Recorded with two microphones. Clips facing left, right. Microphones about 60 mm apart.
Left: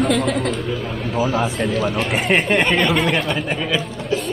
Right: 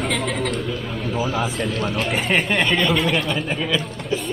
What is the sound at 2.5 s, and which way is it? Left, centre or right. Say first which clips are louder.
Speech: left 3 dB; left.